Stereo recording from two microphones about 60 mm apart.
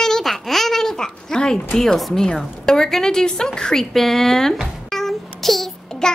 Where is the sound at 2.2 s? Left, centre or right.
Centre.